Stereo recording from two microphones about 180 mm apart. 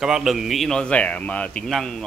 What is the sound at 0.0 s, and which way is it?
Speech, centre (ahead or behind).